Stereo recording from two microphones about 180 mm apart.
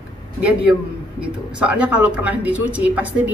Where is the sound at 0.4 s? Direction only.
5° right (ahead or behind).